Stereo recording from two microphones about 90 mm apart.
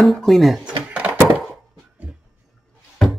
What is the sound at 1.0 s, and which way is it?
Thunk, 15° right (ahead or behind).